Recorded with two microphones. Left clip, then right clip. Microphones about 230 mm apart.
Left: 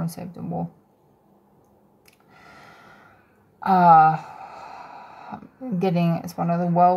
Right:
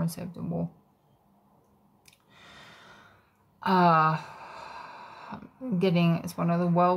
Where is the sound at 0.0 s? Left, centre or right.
Centre.